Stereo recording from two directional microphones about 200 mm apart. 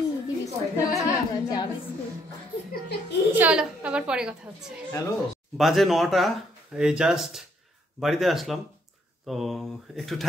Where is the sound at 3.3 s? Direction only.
5° right (ahead or behind).